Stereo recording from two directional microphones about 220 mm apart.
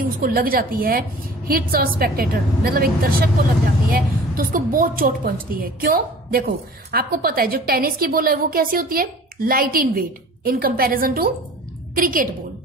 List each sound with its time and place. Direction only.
0.2 s a woman's voice: 40° right (ahead or behind)